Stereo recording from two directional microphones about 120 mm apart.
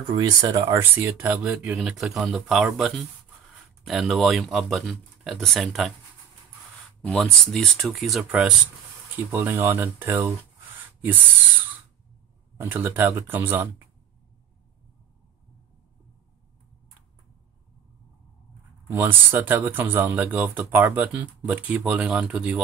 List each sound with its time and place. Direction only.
0.1 s speech: 40° right (ahead or behind)
0.7 s speech: 15° right (ahead or behind); by 5.9 s centre (ahead or behind)
7.1 s speech: 5° left (ahead or behind); by 10.3 s 15° right (ahead or behind)
12.5 s speech: 15° right (ahead or behind)
18.9 s speech: 15° right (ahead or behind)